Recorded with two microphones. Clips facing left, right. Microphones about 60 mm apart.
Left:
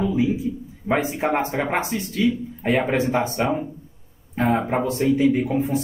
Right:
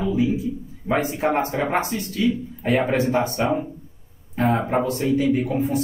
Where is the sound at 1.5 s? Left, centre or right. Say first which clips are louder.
Right 1 dB; left.